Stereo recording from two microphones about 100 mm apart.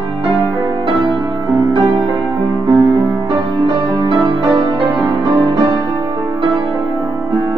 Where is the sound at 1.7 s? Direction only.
60° right (ahead or behind).